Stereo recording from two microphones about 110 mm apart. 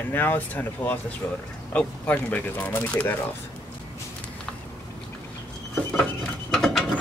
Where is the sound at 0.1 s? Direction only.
15° left (ahead or behind).